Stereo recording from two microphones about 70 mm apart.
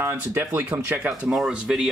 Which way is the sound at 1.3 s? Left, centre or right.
Centre.